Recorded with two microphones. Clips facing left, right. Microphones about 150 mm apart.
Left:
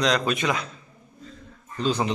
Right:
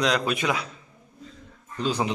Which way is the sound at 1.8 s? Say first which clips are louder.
Left 1 dB; 10° right (ahead or behind).